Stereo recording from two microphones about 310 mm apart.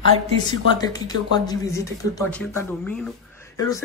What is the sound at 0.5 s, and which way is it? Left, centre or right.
Speech, centre.